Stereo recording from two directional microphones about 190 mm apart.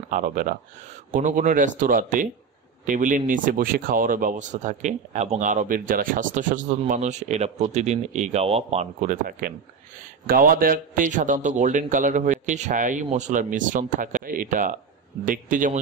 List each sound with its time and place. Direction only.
0.1 s a man's voice: 45° right (ahead or behind)